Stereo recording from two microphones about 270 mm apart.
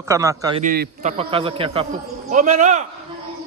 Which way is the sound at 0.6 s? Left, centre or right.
Right.